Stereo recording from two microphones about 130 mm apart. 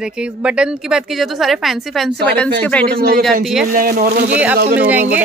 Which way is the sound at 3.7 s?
90° right.